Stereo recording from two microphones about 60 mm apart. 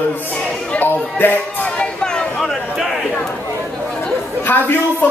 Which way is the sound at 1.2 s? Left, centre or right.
Left.